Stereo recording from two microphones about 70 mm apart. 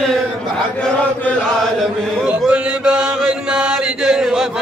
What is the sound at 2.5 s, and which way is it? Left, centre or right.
Chant, centre.